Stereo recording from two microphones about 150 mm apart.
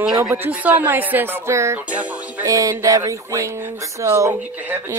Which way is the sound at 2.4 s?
20° right (ahead or behind).